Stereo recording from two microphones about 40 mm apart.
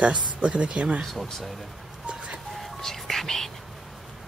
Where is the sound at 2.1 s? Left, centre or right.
Right.